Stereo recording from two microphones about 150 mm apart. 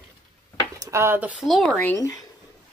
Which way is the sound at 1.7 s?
10° left (ahead or behind).